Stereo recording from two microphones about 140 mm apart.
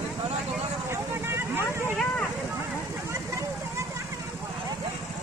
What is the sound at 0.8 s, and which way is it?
Vehicle, 20° right (ahead or behind).